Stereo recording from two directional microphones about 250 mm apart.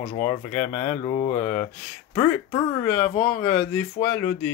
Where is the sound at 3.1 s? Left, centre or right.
Left.